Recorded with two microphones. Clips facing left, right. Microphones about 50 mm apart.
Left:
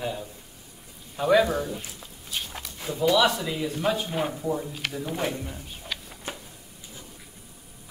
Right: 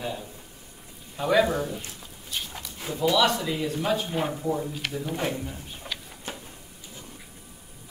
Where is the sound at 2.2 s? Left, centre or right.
Centre.